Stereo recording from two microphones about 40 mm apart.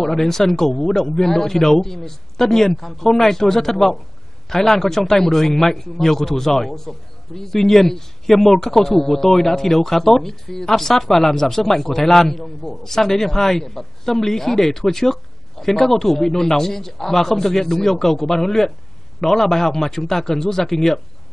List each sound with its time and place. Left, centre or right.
0.0 s speech: centre